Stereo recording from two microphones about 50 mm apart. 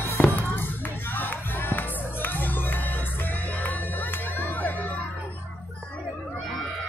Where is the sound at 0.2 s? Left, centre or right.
Left.